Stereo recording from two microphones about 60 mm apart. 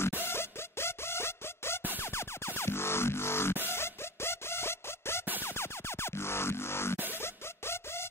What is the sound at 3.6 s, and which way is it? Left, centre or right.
Chicken, left.